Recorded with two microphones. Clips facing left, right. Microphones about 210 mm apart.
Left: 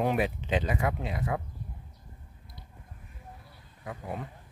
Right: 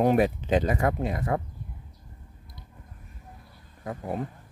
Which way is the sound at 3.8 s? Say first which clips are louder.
Right 5 dB; 40° right (ahead or behind).